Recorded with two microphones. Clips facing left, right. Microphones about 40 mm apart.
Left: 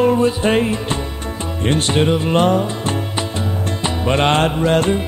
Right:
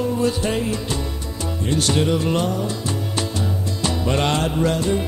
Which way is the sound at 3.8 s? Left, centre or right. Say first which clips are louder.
Left 4 dB; left.